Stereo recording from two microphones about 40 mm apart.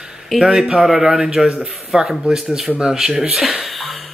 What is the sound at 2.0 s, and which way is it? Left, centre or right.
A woman's voice, centre.